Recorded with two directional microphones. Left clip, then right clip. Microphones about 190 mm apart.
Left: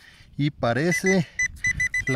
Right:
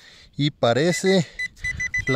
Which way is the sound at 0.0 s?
25° right (ahead or behind).